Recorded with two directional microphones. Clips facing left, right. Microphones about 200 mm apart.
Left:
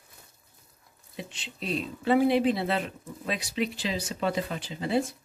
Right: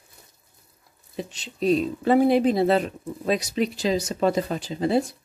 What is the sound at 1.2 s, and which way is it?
Speech, 40° right (ahead or behind).